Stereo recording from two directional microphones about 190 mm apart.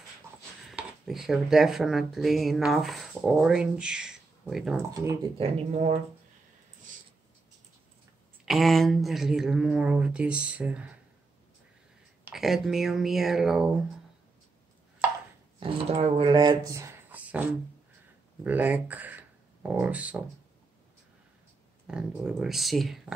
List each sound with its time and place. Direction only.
0.7 s speech: centre (ahead or behind)
5.4 s speech: 40° right (ahead or behind)
8.5 s speech: centre (ahead or behind)
12.3 s speech: centre (ahead or behind)
15.6 s speech: 30° right (ahead or behind); by 20.2 s 5° right (ahead or behind)
21.8 s speech: 5° right (ahead or behind)